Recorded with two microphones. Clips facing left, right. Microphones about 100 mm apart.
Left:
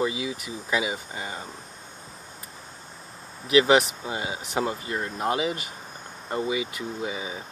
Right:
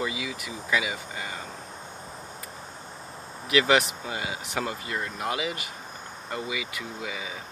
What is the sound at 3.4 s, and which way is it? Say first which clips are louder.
Speech: left 3 dB; 25° left (ahead or behind).